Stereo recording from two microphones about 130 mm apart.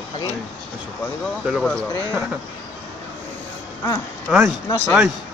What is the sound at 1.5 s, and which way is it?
Speech, 5° left (ahead or behind).